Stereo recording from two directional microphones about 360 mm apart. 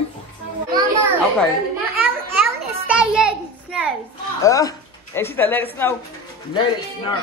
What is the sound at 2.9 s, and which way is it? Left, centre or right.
A child's voice, centre.